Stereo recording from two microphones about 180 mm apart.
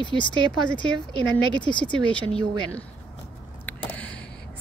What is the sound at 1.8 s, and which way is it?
A woman's voice, 5° left (ahead or behind).